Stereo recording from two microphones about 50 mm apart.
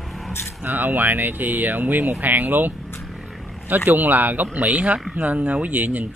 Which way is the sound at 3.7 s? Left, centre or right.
Right.